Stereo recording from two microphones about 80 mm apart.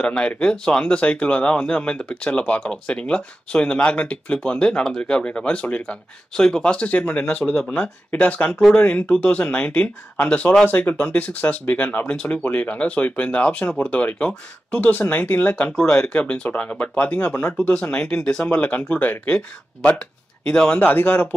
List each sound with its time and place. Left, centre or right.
0.0 s speech: centre
12.2 s speech: centre
17.6 s speech: centre